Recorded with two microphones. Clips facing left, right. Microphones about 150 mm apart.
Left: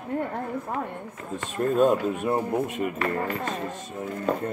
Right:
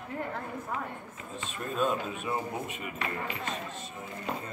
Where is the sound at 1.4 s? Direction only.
55° left (ahead or behind).